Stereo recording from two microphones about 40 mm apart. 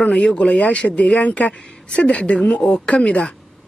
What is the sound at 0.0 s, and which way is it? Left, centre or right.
Speech, left.